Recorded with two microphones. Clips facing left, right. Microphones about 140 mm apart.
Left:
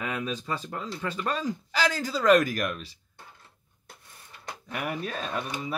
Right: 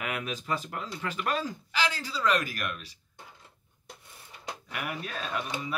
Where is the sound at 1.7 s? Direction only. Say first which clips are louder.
Left 5 dB; 45° left (ahead or behind).